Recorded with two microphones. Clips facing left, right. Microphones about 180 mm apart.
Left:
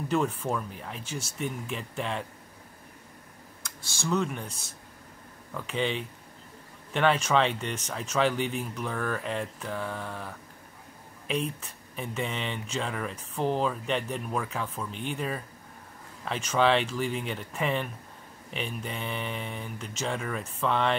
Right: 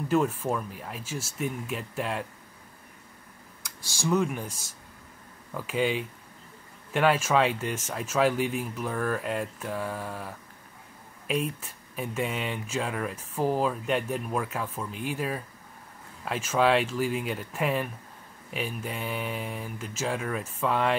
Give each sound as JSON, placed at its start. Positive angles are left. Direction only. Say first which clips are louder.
{"t": 0.1, "sound": "speech", "louder": "right 2 dB", "side_deg": -5}
{"t": 4.0, "sound": "speech", "louder": "right 3 dB", "side_deg": -10}
{"t": 4.5, "sound": "speech", "louder": "right 1 dB", "side_deg": 60}
{"t": 5.5, "sound": "speech", "louder": "right 3 dB", "side_deg": -5}